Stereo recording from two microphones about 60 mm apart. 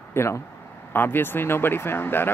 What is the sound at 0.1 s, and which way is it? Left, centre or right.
Speech, left.